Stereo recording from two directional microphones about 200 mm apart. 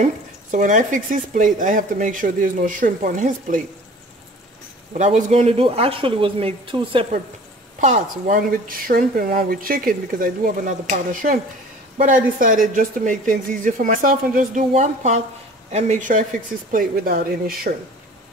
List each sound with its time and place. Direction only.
0.0 s speech: 40° right (ahead or behind)
4.9 s speech: 35° right (ahead or behind)
7.8 s speech: 40° right (ahead or behind)